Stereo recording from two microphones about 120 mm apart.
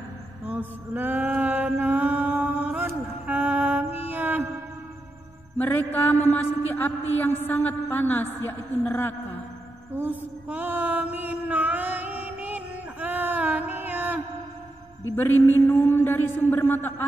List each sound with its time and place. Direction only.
0.5 s mantra: 15° right (ahead or behind)
5.6 s speech: 15° left (ahead or behind)
9.9 s a sound: 15° right (ahead or behind)
15.1 s speech: 20° left (ahead or behind)